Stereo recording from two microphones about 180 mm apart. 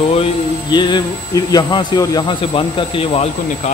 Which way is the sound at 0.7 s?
25° left (ahead or behind).